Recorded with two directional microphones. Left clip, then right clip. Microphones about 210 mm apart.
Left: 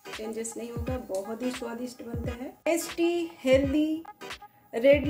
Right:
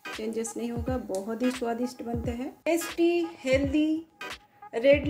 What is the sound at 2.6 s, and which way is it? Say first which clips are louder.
Music: right 1 dB; centre (ahead or behind).